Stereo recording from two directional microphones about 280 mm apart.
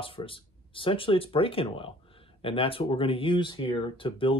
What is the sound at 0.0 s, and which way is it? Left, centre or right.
Speech, centre.